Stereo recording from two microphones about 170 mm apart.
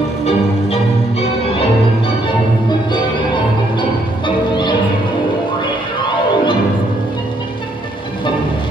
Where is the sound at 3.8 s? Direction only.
25° left (ahead or behind).